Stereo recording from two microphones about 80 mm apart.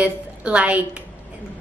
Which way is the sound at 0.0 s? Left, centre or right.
Centre.